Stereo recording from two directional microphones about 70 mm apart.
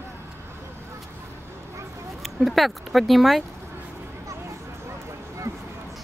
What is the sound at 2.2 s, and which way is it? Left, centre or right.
Speech, centre.